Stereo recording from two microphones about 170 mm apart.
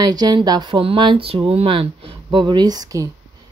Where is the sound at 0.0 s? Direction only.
25° right (ahead or behind).